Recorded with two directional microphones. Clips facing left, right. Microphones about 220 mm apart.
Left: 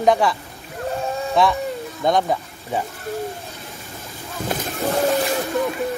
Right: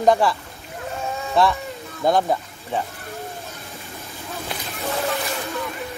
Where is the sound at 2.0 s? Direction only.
Centre (ahead or behind).